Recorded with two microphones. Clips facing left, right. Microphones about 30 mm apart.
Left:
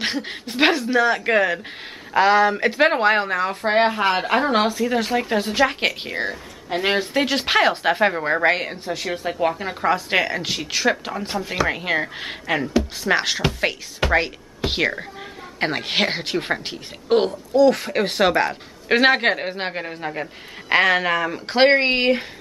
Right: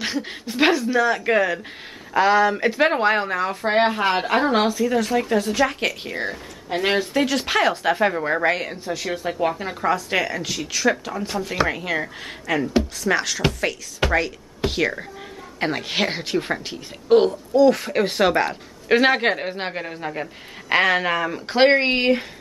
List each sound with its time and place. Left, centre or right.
0.0 s speech: left
4.9 s speech: left
6.7 s speech: centre
7.0 s speech: left
9.9 s speech: left
15.6 s speech: left